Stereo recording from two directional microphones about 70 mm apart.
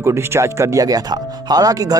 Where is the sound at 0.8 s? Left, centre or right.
Right.